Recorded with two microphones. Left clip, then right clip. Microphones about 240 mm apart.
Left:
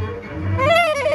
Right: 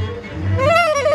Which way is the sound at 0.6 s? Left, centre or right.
Right.